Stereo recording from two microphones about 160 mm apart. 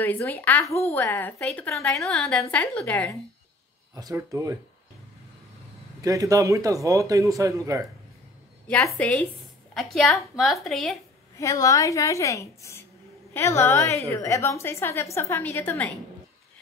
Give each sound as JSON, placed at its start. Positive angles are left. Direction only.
{"t": 0.0, "sound": "a woman's voice", "side_deg": 10}
{"t": 3.9, "sound": "speech", "side_deg": -20}
{"t": 5.9, "sound": "speech", "side_deg": -20}
{"t": 8.9, "sound": "a woman's voice", "side_deg": 10}
{"t": 11.3, "sound": "a woman's voice", "side_deg": 20}